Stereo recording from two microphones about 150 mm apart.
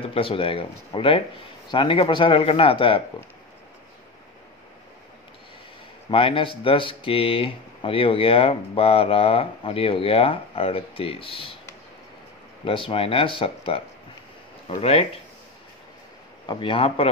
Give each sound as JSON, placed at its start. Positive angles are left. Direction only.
{"t": 0.1, "sound": "speech", "side_deg": 35}
{"t": 6.0, "sound": "speech", "side_deg": 35}
{"t": 12.6, "sound": "speech", "side_deg": 35}
{"t": 16.4, "sound": "speech", "side_deg": 35}